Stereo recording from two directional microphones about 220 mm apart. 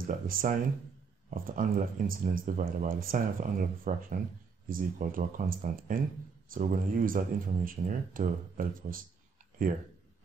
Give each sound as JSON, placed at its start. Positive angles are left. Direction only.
{"t": 0.0, "sound": "speech", "side_deg": -40}